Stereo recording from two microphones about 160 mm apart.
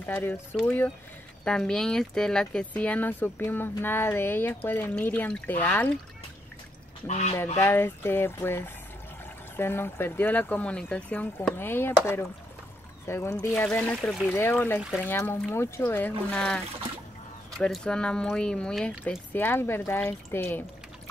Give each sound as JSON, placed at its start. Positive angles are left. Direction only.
{"t": 0.0, "sound": "speech", "side_deg": 10}
{"t": 7.1, "sound": "speech", "side_deg": 45}
{"t": 7.5, "sound": "speech", "side_deg": 15}
{"t": 13.0, "sound": "speech", "side_deg": 15}